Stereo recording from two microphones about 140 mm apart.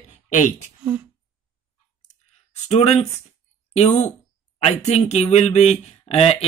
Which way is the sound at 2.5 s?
55° left (ahead or behind).